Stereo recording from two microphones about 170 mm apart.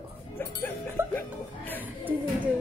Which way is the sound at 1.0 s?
15° right (ahead or behind).